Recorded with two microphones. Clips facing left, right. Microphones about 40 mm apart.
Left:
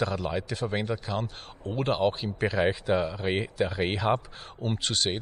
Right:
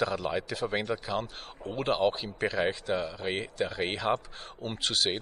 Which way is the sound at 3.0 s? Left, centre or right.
Centre.